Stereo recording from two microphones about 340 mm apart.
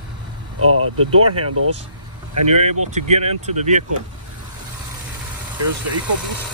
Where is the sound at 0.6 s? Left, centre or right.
Right.